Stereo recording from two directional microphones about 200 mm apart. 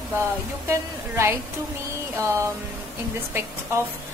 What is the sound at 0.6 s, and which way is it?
A woman's voice, 10° right (ahead or behind).